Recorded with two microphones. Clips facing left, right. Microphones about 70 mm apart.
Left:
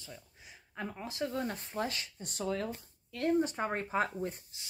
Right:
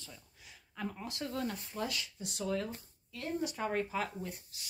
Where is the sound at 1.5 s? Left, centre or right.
Left.